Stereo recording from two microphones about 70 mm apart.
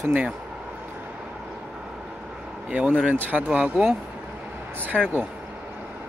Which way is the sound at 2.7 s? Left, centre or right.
Centre.